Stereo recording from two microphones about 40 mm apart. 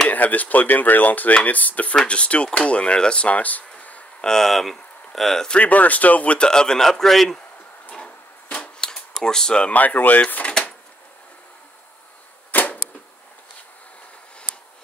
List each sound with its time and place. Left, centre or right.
0.1 s speech: left
4.2 s speech: centre
4.5 s speech: centre
5.6 s speech: left
6.4 s a man's voice: centre
7.9 s a sound: left
9.2 s a man's voice: centre
9.8 s speech: left
12.4 s arrow: left